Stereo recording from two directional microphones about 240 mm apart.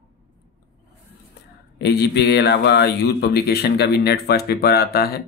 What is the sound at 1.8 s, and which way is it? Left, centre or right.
A man's voice, left.